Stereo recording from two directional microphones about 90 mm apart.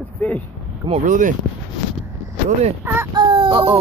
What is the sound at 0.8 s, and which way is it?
Speech, 60° right (ahead or behind).